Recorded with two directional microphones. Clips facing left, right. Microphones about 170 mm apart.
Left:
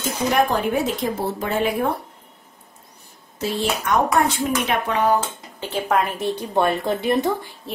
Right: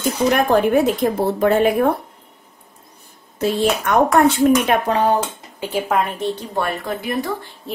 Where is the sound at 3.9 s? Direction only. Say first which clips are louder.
Right 2 dB; 55° right (ahead or behind).